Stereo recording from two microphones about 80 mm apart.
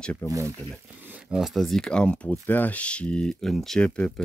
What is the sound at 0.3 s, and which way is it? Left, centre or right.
Speech, right.